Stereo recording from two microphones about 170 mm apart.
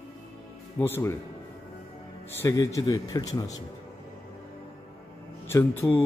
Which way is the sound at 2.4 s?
20° left (ahead or behind).